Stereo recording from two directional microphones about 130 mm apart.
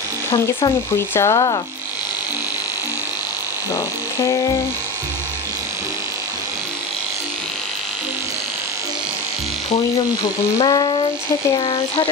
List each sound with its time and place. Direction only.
0.9 s electric shaver: 20° left (ahead or behind)
3.7 s electric shaver: 25° left (ahead or behind)
10.6 s a sound: 35° left (ahead or behind)